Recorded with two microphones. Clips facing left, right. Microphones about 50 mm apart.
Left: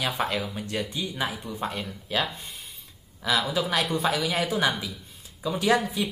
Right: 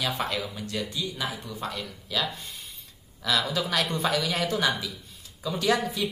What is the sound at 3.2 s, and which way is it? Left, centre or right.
Speech, centre.